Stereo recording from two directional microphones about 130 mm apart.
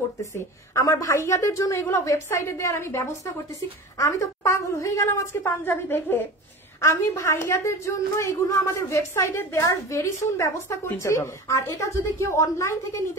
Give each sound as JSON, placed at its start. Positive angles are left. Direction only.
{"t": 0.2, "sound": "a woman's voice", "side_deg": 25}
{"t": 4.0, "sound": "a woman's voice", "side_deg": 25}